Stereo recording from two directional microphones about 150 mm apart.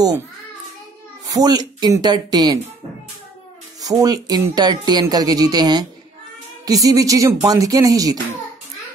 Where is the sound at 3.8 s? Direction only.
25° right (ahead or behind).